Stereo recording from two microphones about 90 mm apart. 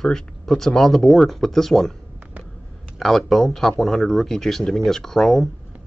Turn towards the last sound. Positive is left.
turn(degrees=0)  # may be behind; listen again after turning